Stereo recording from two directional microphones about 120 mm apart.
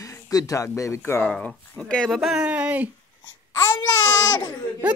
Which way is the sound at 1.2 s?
5° left (ahead or behind).